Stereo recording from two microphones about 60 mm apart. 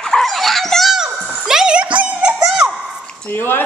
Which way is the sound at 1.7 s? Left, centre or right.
Centre.